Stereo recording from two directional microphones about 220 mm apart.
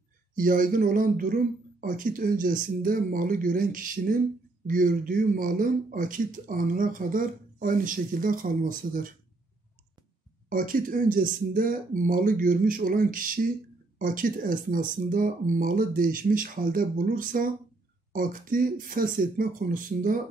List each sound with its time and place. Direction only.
0.4 s a man's voice: 40° right (ahead or behind)
10.5 s a man's voice: 40° right (ahead or behind)